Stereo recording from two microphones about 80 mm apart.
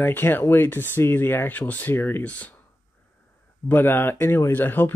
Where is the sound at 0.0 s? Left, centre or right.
Left.